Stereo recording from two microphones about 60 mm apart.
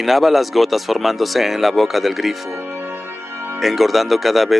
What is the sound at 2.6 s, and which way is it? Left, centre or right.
Music, right.